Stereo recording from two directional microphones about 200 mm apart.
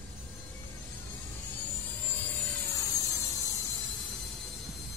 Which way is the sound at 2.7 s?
15° left (ahead or behind).